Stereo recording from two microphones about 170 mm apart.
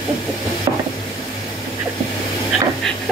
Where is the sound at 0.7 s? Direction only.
30° right (ahead or behind).